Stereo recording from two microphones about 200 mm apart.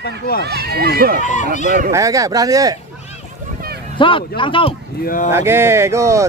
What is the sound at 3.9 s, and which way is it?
Speech, 25° left (ahead or behind).